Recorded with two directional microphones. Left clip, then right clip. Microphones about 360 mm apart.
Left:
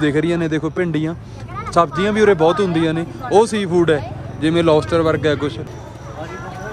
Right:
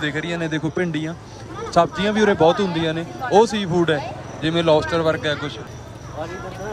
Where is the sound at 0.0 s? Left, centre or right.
Centre.